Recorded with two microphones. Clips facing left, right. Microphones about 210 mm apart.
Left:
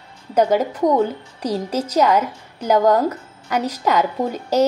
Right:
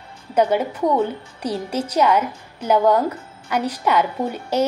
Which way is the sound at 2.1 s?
10° left (ahead or behind).